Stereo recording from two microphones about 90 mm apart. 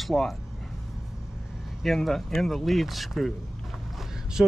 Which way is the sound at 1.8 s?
5° left (ahead or behind).